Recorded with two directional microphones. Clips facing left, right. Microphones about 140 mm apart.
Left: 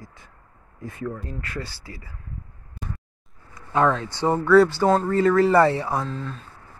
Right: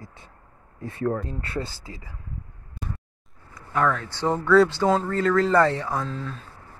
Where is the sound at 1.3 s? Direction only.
30° right (ahead or behind).